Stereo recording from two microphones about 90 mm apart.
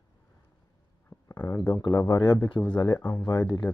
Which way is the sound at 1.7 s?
50° left (ahead or behind).